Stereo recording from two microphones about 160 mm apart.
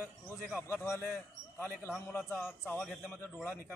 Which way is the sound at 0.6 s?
15° left (ahead or behind).